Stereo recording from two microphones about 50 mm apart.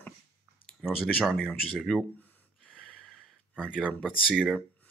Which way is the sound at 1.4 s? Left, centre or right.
Centre.